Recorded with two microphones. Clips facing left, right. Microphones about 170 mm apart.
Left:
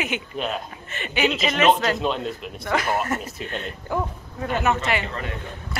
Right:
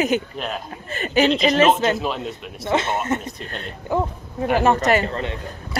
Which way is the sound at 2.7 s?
25° right (ahead or behind).